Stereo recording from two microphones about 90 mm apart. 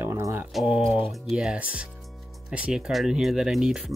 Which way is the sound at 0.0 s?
30° right (ahead or behind).